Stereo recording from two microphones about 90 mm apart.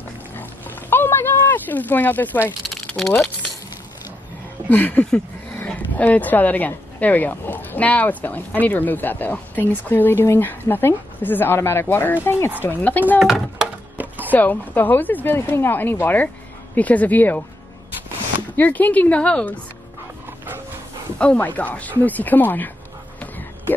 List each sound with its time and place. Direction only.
0.4 s oink: 20° left (ahead or behind)
2.9 s speech: 10° left (ahead or behind)
4.6 s speech: 20° left (ahead or behind)
13.2 s a sound: 5° right (ahead or behind)
13.9 s a sound: 20° right (ahead or behind)
14.3 s speech: 20° left (ahead or behind)
18.6 s speech: 20° left (ahead or behind)
21.2 s speech: 15° left (ahead or behind)